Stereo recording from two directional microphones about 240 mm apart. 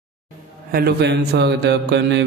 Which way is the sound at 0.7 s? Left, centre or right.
Right.